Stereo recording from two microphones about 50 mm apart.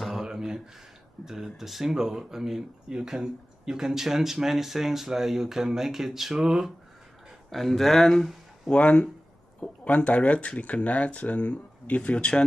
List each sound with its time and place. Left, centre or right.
0.2 s a sound: centre
1.2 s speech: centre
7.5 s speech: centre
8.6 s speech: left